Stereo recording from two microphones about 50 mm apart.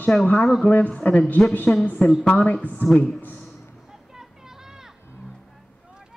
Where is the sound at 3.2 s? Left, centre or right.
Left.